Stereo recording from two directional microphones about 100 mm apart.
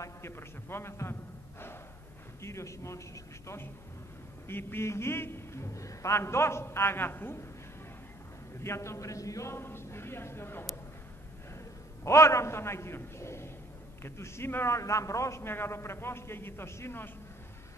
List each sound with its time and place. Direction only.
0.0 s a man's voice: 25° left (ahead or behind)
2.4 s a man's voice: 30° left (ahead or behind)
8.6 s a man's voice: 30° left (ahead or behind)
12.0 s a man's voice: 30° left (ahead or behind)